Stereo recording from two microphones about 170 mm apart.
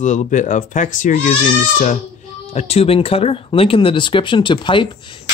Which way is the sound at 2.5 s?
35° left (ahead or behind).